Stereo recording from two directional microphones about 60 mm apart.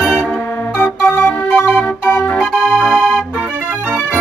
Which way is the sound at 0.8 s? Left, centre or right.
Left.